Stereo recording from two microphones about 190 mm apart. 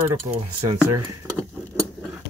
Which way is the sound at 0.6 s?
25° right (ahead or behind).